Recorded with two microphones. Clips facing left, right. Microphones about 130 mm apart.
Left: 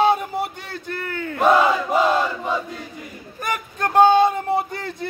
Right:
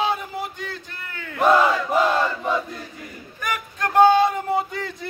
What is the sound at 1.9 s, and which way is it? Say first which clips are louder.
Battle cry: left 1 dB; 10° left (ahead or behind).